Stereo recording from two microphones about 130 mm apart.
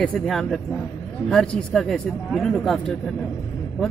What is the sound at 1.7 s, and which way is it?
Speech, 5° left (ahead or behind).